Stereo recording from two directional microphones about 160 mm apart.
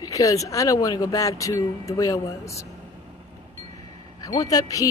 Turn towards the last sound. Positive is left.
turn(degrees=20)  # may be behind; listen again after turning